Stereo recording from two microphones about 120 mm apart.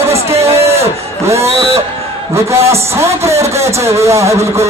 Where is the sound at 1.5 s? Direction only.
55° right (ahead or behind).